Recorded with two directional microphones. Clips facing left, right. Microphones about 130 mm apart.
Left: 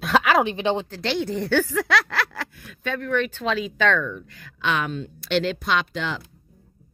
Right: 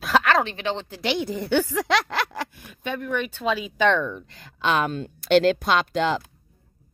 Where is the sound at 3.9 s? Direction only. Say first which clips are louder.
Right 1 dB; 30° right (ahead or behind).